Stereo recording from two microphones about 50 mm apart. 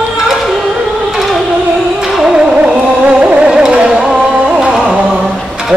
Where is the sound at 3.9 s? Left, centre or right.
Centre.